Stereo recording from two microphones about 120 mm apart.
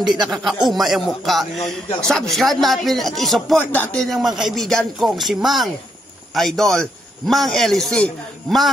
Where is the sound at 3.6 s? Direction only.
15° left (ahead or behind).